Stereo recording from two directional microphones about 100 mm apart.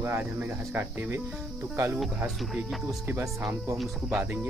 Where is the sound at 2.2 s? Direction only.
5° right (ahead or behind).